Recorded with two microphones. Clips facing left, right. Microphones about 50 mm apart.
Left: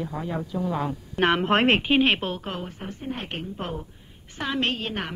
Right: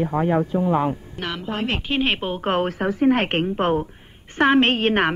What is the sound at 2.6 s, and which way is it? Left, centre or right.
Speech, right.